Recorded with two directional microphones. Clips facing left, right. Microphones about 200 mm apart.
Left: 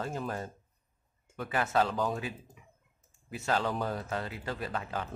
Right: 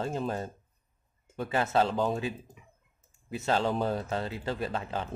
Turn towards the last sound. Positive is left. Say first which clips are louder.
# right 3 dB
turn(degrees=-25)  # may be behind; listen again after turning